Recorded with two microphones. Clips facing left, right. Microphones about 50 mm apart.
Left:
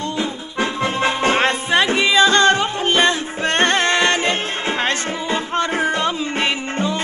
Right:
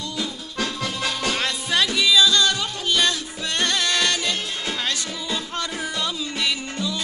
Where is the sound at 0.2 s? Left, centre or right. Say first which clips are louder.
Left 3 dB; left.